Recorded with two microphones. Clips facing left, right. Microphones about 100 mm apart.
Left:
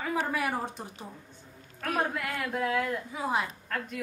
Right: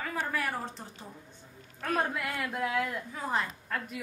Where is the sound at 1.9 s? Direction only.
Centre (ahead or behind).